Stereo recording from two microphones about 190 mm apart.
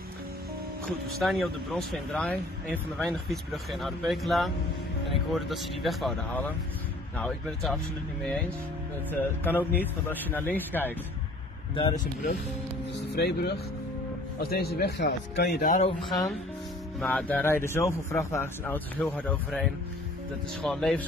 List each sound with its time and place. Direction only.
1.2 s speech: centre (ahead or behind)
9.1 s speech: 10° left (ahead or behind)
11.7 s speech: 25° left (ahead or behind)
13.1 s a man's voice: 60° left (ahead or behind)
17.0 s speech: 5° left (ahead or behind)